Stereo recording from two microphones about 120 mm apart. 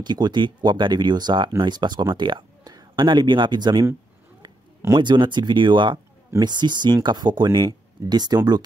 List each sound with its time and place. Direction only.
0.0 s speech: 40° right (ahead or behind)
4.9 s speech: 40° right (ahead or behind)